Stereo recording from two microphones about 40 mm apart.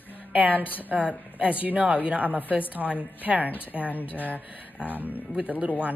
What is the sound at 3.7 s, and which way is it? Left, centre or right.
Speech, right.